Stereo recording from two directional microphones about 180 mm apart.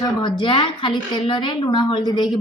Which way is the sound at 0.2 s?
25° left (ahead or behind).